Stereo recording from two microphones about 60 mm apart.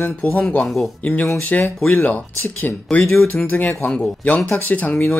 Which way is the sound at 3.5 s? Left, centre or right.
Left.